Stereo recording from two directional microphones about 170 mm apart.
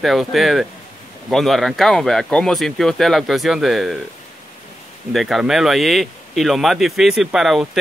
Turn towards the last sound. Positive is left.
turn(degrees=0)  # may be behind; listen again after turning